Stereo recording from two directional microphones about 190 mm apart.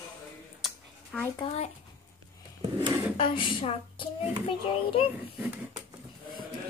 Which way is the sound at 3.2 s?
25° left (ahead or behind).